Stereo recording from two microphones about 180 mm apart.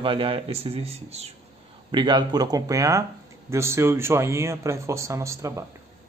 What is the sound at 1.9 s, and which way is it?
Speech, 25° right (ahead or behind).